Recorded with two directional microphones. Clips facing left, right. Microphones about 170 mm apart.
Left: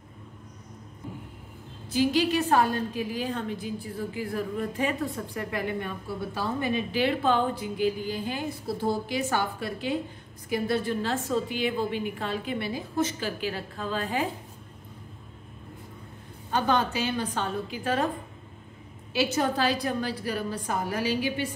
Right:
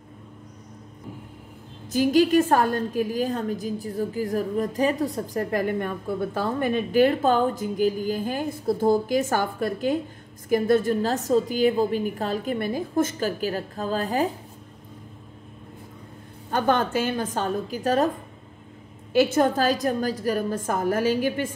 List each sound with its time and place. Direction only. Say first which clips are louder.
1.9 s a woman's voice: right 5 dB; 45° right (ahead or behind)
16.4 s a woman's voice: right 3 dB; 50° right (ahead or behind)
19.1 s a woman's voice: right 6 dB; 50° right (ahead or behind)